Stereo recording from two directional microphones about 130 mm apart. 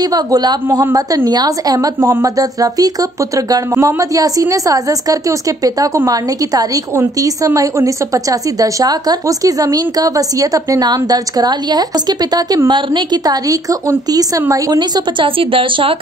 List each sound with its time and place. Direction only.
0.0 s a woman's voice: 30° right (ahead or behind)